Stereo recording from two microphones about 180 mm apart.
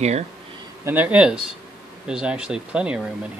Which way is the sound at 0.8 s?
10° right (ahead or behind).